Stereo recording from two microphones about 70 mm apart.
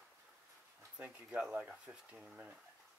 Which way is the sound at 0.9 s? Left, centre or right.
Centre.